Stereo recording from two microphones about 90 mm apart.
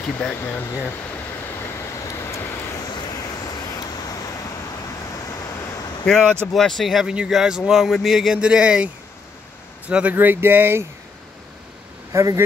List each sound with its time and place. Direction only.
0.0 s speech: 10° left (ahead or behind)
2.0 s vehicle: 35° left (ahead or behind)
2.9 s vehicle: 50° left (ahead or behind)
6.0 s a man's voice: 5° left (ahead or behind); by 10.9 s 25° right (ahead or behind)
12.1 s speech: 35° right (ahead or behind)